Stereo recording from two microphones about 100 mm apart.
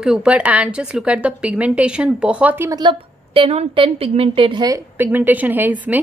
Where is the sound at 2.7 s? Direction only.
50° right (ahead or behind).